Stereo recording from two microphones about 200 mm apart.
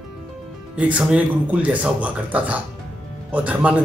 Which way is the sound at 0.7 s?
5° right (ahead or behind).